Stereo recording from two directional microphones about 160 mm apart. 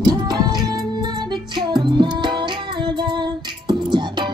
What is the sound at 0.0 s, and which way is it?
Music, 25° right (ahead or behind).